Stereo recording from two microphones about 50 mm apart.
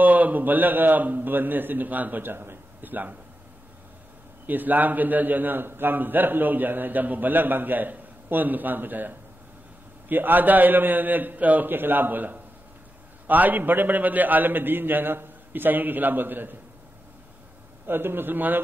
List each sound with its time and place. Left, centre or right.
0.0 s a man's voice: right
4.5 s a man's voice: right
17.8 s a man's voice: right